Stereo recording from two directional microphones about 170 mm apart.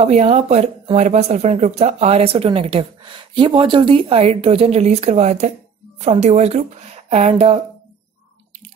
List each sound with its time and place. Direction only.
0.0 s speech: 40° right (ahead or behind)